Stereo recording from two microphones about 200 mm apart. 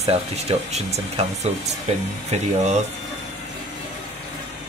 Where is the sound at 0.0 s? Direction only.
30° right (ahead or behind).